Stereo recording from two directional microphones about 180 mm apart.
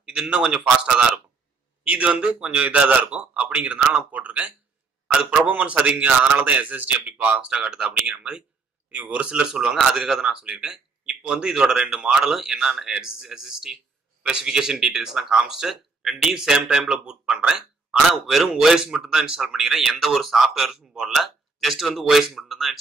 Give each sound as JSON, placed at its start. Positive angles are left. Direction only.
{"t": 0.0, "sound": "a man's voice", "side_deg": -5}